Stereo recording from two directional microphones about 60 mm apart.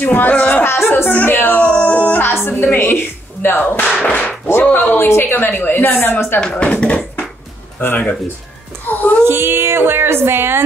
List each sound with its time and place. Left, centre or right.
0.0 s a sound: left
0.7 s music: left
2.4 s a woman's voice: left
4.0 s whip: left
4.7 s a woman's voice: left
6.4 s speech: centre
8.8 s a child's voice: left
9.2 s speech: right